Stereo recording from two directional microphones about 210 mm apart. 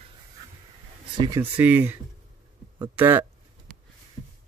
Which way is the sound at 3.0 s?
10° right (ahead or behind).